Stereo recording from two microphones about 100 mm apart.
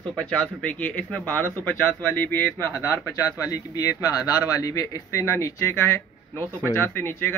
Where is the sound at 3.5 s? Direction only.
40° left (ahead or behind); by 7.3 s 20° left (ahead or behind).